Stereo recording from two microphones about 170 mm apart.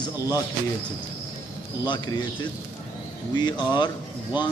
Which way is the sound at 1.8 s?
25° left (ahead or behind).